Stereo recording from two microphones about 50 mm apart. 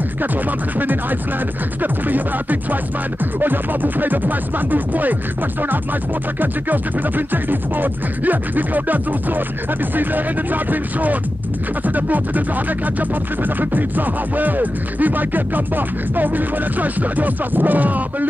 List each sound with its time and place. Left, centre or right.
1.8 s speech: right
6.4 s speech: right